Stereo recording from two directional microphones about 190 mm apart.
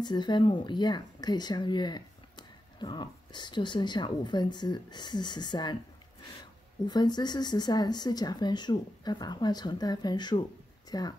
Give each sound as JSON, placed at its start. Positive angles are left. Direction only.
{"t": 0.0, "sound": "speech", "side_deg": 25}
{"t": 6.9, "sound": "speech", "side_deg": 20}